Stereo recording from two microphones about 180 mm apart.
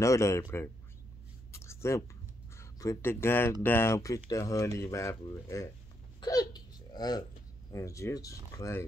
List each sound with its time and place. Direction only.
0.0 s speech: 15° left (ahead or behind)
1.5 s a sound: 15° left (ahead or behind)
2.5 s speech: 15° left (ahead or behind)